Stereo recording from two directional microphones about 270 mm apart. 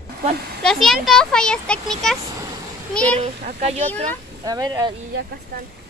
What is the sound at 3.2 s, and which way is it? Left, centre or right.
A child's voice, right.